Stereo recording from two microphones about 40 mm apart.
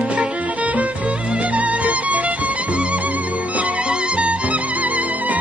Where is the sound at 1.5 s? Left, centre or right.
Right.